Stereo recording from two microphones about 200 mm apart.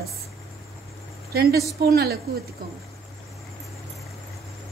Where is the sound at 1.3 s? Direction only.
50° right (ahead or behind).